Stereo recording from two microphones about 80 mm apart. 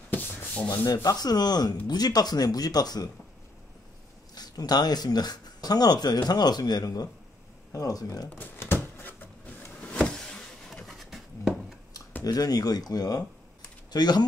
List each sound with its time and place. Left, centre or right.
0.9 s speech: left
4.4 s speech: left
8.5 s power windows: left; by 11.6 s centre
12.2 s speech: left